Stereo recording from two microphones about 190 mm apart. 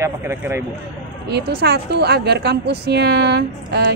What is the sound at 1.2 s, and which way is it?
A woman's voice, 60° right (ahead or behind).